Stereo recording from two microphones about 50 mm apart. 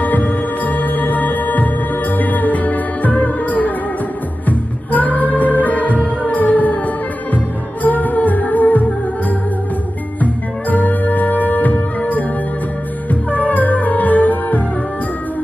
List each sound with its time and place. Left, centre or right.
0.0 s music: left
7.8 s music: left
10.2 s music: left